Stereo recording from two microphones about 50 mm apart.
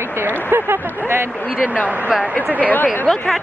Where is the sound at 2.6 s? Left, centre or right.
Left.